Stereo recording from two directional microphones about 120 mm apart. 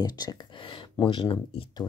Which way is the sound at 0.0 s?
35° left (ahead or behind).